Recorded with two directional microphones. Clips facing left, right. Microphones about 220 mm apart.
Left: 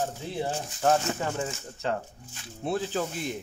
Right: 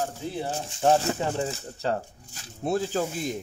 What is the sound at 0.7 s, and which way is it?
Speech, 25° right (ahead or behind).